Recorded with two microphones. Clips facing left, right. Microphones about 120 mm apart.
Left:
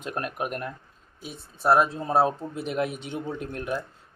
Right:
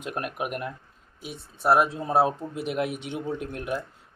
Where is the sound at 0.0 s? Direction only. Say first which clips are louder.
Even; 10° right (ahead or behind).